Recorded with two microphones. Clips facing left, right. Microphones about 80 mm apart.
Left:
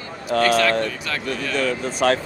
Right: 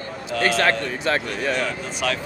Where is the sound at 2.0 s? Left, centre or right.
Left.